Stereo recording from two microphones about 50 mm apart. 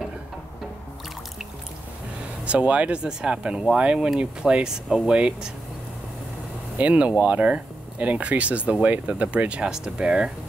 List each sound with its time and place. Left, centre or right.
2.4 s speech: right
6.8 s speech: right